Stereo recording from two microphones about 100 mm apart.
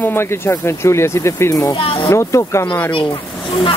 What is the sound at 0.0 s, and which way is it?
Speech, 25° left (ahead or behind).